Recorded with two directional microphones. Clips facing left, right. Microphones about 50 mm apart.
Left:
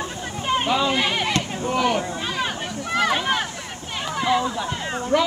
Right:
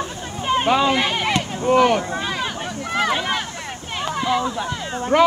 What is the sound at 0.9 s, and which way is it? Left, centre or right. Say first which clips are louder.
Speech: right 2 dB; right.